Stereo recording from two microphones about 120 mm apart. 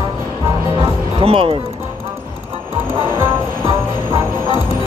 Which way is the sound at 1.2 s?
50° right (ahead or behind).